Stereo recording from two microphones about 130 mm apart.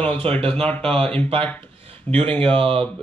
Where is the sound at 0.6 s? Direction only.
10° left (ahead or behind).